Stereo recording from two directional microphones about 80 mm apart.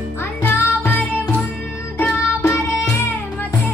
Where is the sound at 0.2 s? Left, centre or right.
Left.